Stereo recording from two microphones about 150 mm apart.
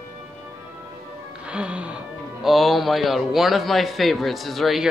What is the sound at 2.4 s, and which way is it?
A man's voice, centre (ahead or behind).